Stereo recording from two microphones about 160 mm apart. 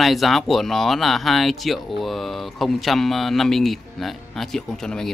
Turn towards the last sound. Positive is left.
turn(degrees=5)  # may be behind; listen again after turning